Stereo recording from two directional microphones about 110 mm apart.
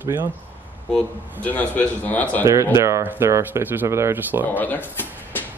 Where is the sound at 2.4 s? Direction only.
25° right (ahead or behind).